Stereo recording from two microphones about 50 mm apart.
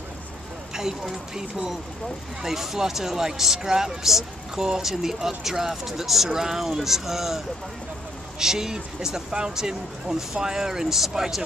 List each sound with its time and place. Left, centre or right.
0.7 s speech: centre